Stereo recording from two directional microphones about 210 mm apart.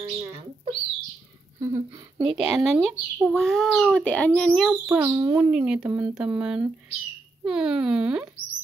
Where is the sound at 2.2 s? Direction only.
Centre (ahead or behind).